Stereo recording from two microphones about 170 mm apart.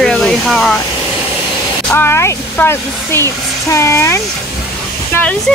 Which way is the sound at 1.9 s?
15° left (ahead or behind).